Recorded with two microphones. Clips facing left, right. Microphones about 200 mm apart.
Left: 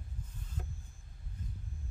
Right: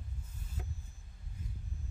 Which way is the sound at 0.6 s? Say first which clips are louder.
Left 1 dB; 5° right (ahead or behind).